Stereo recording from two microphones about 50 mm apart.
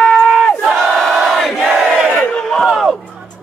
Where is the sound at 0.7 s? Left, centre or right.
Centre.